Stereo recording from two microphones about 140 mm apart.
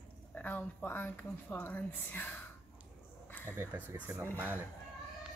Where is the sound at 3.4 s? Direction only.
15° right (ahead or behind).